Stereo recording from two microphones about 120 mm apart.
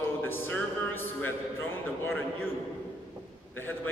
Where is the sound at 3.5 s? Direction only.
20° left (ahead or behind).